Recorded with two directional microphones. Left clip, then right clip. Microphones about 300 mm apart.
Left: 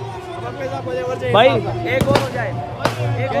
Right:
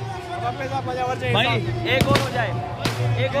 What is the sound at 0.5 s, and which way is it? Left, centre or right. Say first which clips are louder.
Speech: left 2 dB; centre.